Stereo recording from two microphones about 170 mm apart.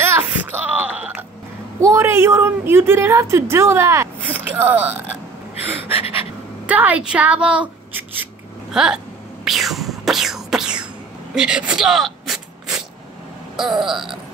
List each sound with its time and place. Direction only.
0.0 s a sound: 10° right (ahead or behind)
1.8 s a woman's voice: 15° right (ahead or behind)
5.9 s gasp: 35° left (ahead or behind)
6.6 s speech: 10° right (ahead or behind)
8.7 s beatboxing: 5° right (ahead or behind)
11.3 s a sound: 5° right (ahead or behind)